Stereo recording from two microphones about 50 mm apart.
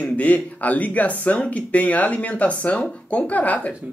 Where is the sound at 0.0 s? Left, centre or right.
Left.